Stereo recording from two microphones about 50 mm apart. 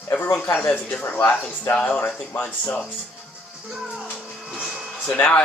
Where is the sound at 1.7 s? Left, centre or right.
Left.